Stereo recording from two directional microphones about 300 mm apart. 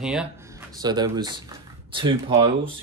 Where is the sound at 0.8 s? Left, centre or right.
Centre.